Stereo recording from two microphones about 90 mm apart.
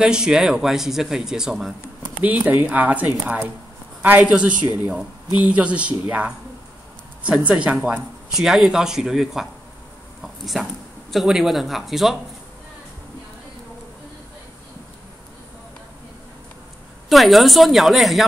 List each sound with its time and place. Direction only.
0.0 s speech: 10° right (ahead or behind)
7.4 s speech: 10° right (ahead or behind)
17.1 s speech: centre (ahead or behind)